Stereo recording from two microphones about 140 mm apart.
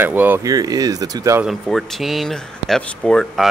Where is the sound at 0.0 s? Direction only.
15° right (ahead or behind).